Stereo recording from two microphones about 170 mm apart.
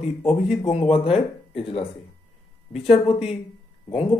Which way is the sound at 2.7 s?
35° left (ahead or behind).